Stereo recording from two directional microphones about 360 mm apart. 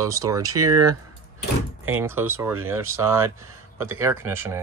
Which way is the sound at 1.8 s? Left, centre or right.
Centre.